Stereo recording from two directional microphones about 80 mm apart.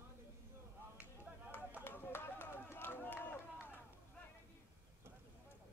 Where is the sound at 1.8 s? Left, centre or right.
Left.